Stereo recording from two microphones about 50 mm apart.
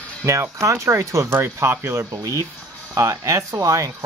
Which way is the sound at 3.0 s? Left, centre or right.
Right.